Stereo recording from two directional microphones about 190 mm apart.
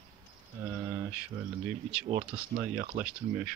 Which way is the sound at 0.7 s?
10° right (ahead or behind).